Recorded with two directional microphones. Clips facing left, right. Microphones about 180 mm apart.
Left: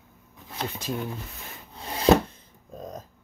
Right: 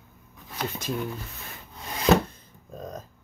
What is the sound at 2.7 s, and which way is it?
Music, 15° left (ahead or behind).